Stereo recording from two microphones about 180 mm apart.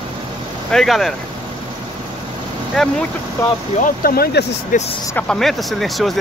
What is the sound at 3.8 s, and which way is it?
Speech, 55° left (ahead or behind).